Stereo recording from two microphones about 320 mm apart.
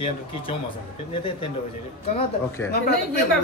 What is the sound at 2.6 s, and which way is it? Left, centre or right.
Speech, centre.